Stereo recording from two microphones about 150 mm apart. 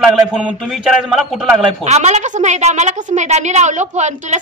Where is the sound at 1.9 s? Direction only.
45° right (ahead or behind).